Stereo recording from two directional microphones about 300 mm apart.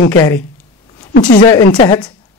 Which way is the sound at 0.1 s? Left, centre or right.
Centre.